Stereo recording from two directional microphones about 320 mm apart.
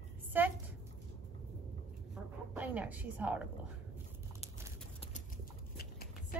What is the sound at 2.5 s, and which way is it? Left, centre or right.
Speech, centre.